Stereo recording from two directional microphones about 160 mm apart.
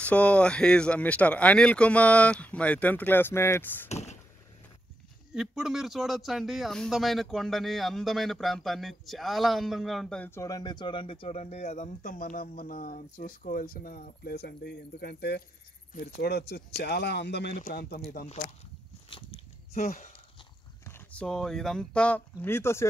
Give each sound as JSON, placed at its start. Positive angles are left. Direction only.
{"t": 0.0, "sound": "speech", "side_deg": 10}
{"t": 3.9, "sound": "vehicle", "side_deg": 45}
{"t": 5.3, "sound": "speech", "side_deg": -5}
{"t": 15.9, "sound": "speech", "side_deg": 65}
{"t": 17.6, "sound": "speech", "side_deg": 75}
{"t": 18.2, "sound": "speech", "side_deg": 40}
{"t": 19.0, "sound": "a sound", "side_deg": 35}
{"t": 20.8, "sound": "speech", "side_deg": 10}